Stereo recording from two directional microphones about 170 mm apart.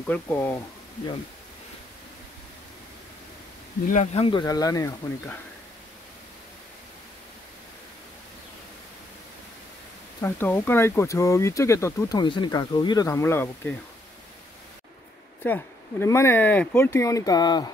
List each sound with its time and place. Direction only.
0.0 s speech: 10° left (ahead or behind)
3.8 s speech: 45° left (ahead or behind); by 4.9 s 20° left (ahead or behind)
10.2 s speech: 10° left (ahead or behind)
12.2 s speech: 25° left (ahead or behind)
15.4 s speech: 15° left (ahead or behind)